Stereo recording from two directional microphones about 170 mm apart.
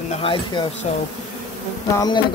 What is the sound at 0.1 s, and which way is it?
Speech, 30° left (ahead or behind).